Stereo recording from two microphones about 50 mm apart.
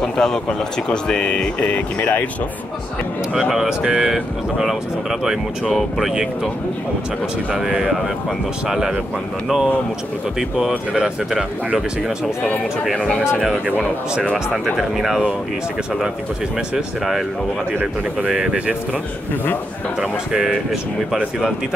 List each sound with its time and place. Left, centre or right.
0.0 s speech: centre; by 2.2 s left
3.3 s speech: centre
3.6 s speech: centre
4.1 s speech: centre
7.5 s speech: centre
10.9 s speech: centre
13.2 s speech: centre
16.7 s speech: centre
18.2 s speech: right
20.0 s speech: centre